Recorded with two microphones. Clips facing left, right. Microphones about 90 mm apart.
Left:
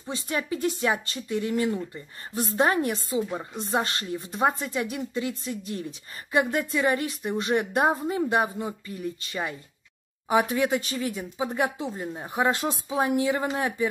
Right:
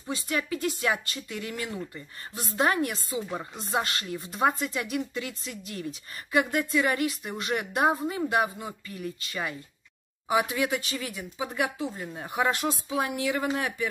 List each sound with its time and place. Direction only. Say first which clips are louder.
0.1 s speech: left 1 dB; 35° left (ahead or behind)
12.0 s speech: left 3 dB; 20° left (ahead or behind)